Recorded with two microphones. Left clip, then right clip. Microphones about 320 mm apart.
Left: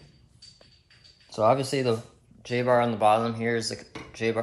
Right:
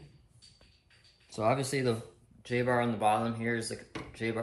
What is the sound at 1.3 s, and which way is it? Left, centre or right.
Speech, centre.